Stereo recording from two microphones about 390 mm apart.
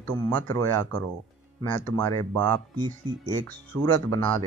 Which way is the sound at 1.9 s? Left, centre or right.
Centre.